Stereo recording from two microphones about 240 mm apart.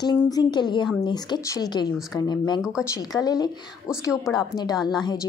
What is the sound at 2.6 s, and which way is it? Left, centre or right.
Speech, centre.